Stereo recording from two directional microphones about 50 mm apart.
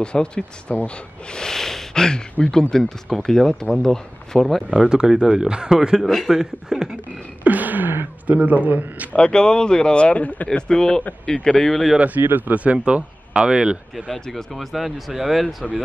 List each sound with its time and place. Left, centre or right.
0.0 s speech: centre
4.6 s speech: centre
6.0 s speech: centre
6.3 s speech: centre
7.4 s a sound: right
8.4 s a man's voice: right
9.1 s speech: centre
12.0 s speech: right; by 13.7 s centre
14.1 s speech: centre